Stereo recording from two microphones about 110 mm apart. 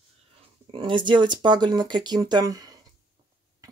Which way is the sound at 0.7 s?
45° right (ahead or behind).